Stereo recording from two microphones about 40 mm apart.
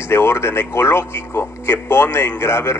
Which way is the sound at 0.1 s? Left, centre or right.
Left.